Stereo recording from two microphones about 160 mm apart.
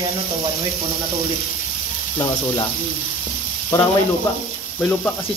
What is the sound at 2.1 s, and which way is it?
Speech, 25° left (ahead or behind).